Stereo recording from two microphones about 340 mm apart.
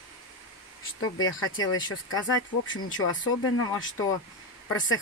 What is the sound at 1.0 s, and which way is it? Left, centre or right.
Speech, left.